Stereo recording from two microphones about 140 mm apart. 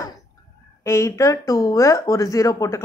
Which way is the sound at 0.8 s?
20° left (ahead or behind).